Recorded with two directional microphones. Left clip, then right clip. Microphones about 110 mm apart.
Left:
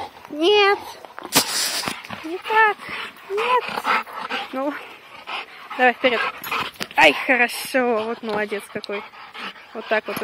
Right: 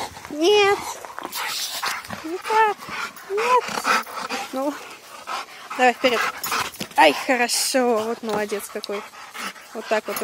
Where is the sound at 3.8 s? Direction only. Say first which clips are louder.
Even; 45° right (ahead or behind).